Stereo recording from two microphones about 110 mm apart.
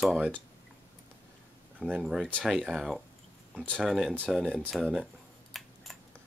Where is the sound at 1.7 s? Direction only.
10° right (ahead or behind).